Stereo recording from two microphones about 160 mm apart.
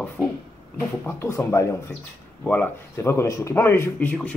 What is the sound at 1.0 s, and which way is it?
Speech, 15° left (ahead or behind).